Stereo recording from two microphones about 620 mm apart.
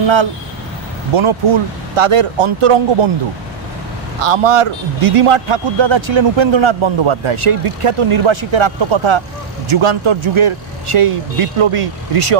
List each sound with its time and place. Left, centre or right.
0.0 s a man's voice: right
4.2 s a man's voice: right